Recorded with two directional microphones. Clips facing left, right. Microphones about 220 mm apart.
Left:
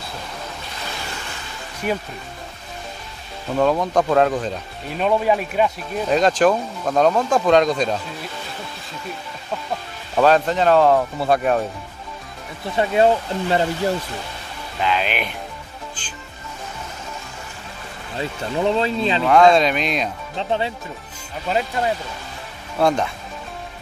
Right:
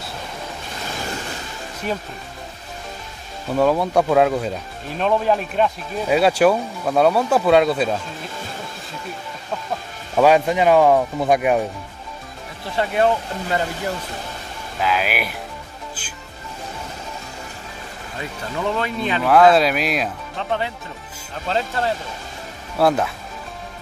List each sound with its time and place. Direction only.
3.5 s speech: 10° right (ahead or behind)
4.9 s speech: 5° left (ahead or behind)
6.0 s speech: 10° right (ahead or behind)
10.1 s speech: 10° right (ahead or behind)
12.7 s speech: 25° left (ahead or behind)
14.8 s speech: 5° right (ahead or behind)
16.0 s music: 5° right (ahead or behind)
18.1 s speech: 25° left (ahead or behind)
19.2 s speech: 5° right (ahead or behind)
20.3 s speech: 20° left (ahead or behind)
22.8 s speech: 5° right (ahead or behind)